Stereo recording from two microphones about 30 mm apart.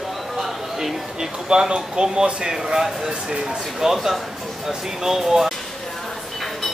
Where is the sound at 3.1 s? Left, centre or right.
Right.